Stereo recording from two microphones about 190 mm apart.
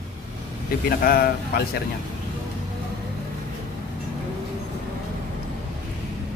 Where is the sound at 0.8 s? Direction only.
50° left (ahead or behind).